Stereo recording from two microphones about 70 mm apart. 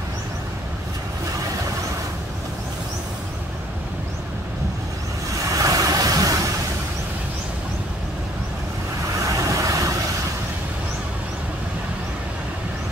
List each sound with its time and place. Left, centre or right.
5.5 s vehicle: right
9.3 s vehicle: right